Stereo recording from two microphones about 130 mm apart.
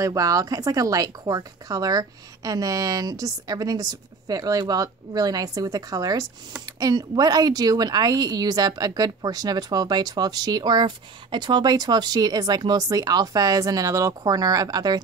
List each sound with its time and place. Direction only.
0.0 s a woman's voice: 25° right (ahead or behind)